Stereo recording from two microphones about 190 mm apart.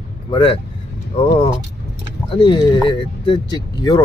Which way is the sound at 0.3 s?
30° left (ahead or behind).